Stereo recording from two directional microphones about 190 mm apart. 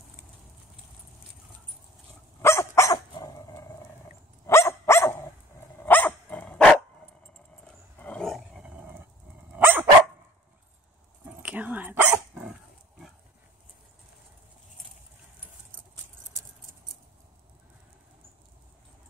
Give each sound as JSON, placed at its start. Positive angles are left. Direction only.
{"t": 2.4, "sound": "dog", "side_deg": 15}
{"t": 11.4, "sound": "dog", "side_deg": -10}